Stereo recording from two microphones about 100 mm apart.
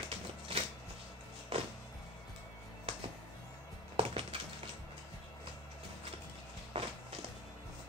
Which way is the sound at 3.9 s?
65° right (ahead or behind).